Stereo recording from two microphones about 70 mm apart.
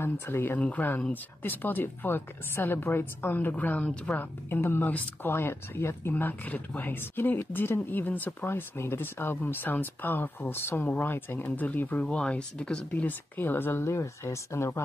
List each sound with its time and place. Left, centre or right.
0.0 s speech: left
4.5 s speech: left
12.1 s speech: centre
13.4 s speech: left